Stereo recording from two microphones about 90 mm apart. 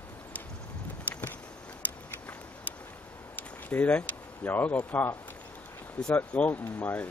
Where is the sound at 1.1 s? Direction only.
20° left (ahead or behind).